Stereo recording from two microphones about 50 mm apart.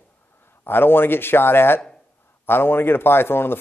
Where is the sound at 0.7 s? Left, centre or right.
Left.